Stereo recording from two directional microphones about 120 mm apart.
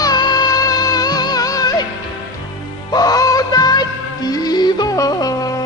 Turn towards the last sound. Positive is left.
turn(degrees=30)  # may be behind; listen again after turning